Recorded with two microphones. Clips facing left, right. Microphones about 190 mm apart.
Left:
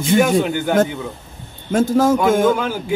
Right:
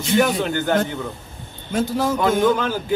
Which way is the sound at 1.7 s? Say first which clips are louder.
Left 6 dB; 45° left (ahead or behind).